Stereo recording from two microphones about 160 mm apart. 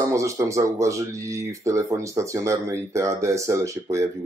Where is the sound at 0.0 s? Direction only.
20° right (ahead or behind).